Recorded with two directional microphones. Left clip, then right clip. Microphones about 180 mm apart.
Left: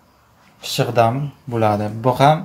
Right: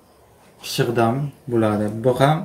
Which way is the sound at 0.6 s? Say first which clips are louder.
Left 4 dB; 50° left (ahead or behind).